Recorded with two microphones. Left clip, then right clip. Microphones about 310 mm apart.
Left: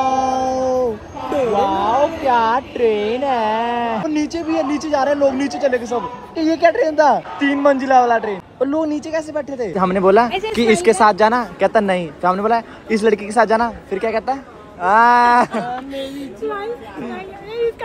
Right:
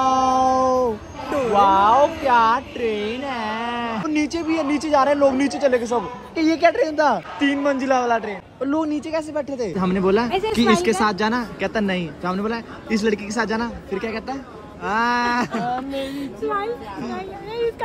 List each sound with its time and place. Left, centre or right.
0.0 s dog: centre
1.3 s a man's voice: centre
15.7 s speech: right